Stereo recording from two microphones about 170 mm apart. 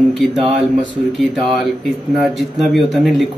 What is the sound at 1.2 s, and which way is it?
Speech, centre (ahead or behind).